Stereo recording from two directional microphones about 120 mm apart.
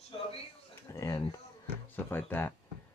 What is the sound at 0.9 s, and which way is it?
Speech, 25° left (ahead or behind).